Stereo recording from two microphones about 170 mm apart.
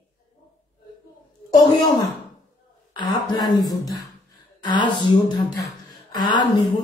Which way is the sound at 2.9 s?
25° left (ahead or behind).